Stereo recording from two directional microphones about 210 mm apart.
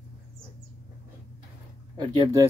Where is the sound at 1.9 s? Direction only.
20° right (ahead or behind).